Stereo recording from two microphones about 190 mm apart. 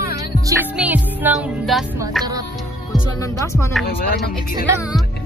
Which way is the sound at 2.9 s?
15° left (ahead or behind).